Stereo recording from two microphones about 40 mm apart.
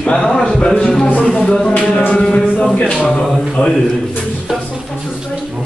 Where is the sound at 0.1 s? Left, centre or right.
Centre.